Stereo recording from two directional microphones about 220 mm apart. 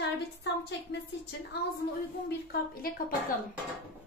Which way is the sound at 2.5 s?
40° left (ahead or behind).